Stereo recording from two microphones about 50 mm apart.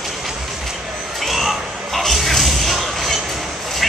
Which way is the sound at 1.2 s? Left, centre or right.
Centre.